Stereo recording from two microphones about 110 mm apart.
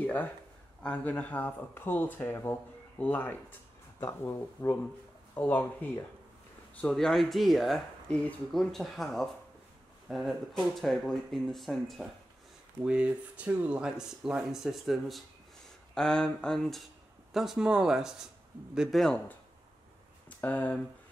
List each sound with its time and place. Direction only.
0.0 s a sound: 15° left (ahead or behind)
0.8 s speech: 15° left (ahead or behind)
6.8 s speech: 5° left (ahead or behind)
12.8 s speech: 10° right (ahead or behind); by 20.8 s 15° left (ahead or behind)